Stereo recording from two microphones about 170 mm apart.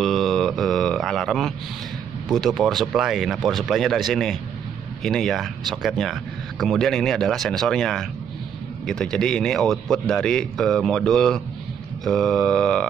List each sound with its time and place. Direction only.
0.0 s mantra: centre (ahead or behind)
2.2 s a man's voice: centre (ahead or behind)